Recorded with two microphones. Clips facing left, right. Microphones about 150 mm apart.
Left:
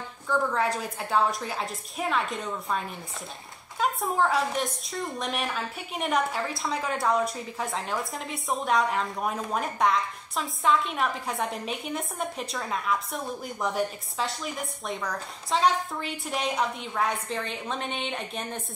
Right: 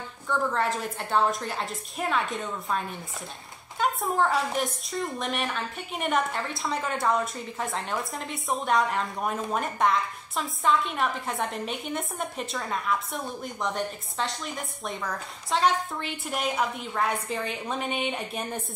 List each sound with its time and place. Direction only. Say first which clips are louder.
0.3 s a woman's voice: left 1 dB; centre (ahead or behind)
3.8 s a woman's voice: even; centre (ahead or behind)